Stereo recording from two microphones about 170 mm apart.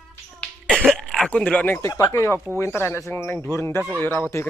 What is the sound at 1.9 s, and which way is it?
Speech, 20° left (ahead or behind).